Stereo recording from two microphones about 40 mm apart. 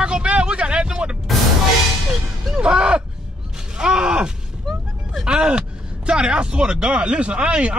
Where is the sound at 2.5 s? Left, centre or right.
Right.